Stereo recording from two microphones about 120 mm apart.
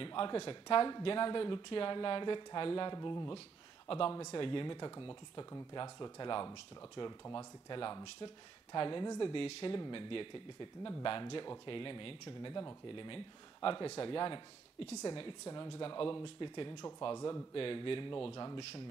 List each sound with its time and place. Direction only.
0.0 s speech: 45° left (ahead or behind)
4.4 s speech: 45° left (ahead or behind)
15.4 s speech: 30° left (ahead or behind)
15.8 s speech: 40° left (ahead or behind)
17.0 s speech: 30° left (ahead or behind)
17.6 s speech: 45° left (ahead or behind)